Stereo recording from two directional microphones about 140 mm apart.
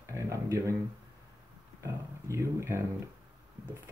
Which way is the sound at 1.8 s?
20° right (ahead or behind).